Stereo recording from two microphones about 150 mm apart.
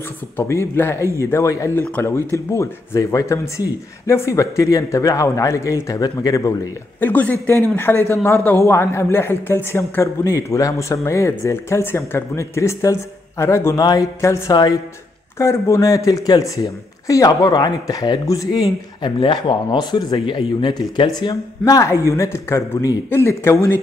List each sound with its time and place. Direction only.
0.4 s speech: 15° left (ahead or behind)
7.1 s speech: 10° left (ahead or behind)